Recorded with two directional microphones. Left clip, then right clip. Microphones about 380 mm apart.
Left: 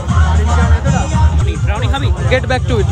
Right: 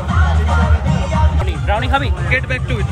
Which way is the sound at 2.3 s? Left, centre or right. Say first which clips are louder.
Left 4 dB; centre.